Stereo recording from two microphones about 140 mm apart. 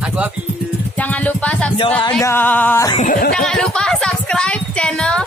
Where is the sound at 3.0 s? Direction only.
70° left (ahead or behind).